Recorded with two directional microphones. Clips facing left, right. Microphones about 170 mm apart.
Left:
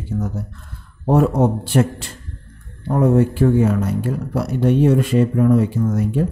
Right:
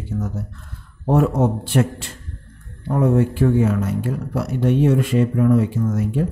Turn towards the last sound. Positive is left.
turn(degrees=35)  # may be behind; listen again after turning